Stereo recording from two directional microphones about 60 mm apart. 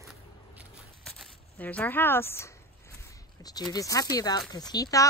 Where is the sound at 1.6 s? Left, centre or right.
Left.